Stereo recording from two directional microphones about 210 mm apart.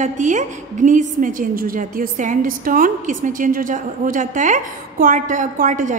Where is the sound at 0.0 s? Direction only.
35° right (ahead or behind).